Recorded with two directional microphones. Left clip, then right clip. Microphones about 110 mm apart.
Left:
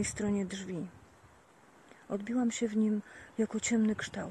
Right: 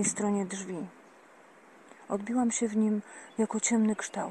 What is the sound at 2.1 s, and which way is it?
Speech, 50° left (ahead or behind).